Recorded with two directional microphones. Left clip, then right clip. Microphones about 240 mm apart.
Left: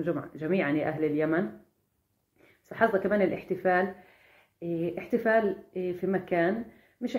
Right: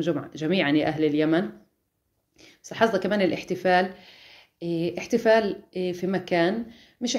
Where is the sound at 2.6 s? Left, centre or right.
Right.